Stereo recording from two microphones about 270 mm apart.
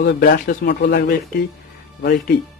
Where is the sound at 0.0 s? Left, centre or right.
Left.